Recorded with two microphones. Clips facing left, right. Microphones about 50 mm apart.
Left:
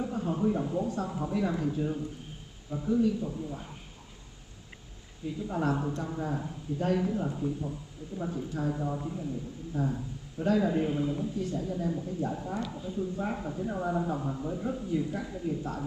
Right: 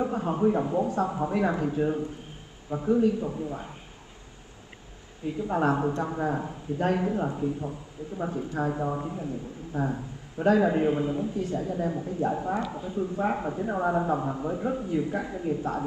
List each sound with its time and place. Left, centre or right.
0.0 s a man's voice: right
5.5 s a man's voice: right
10.9 s a man's voice: right